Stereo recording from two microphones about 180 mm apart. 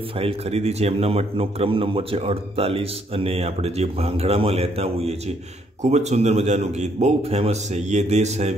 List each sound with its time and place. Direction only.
0.2 s speech: 35° right (ahead or behind)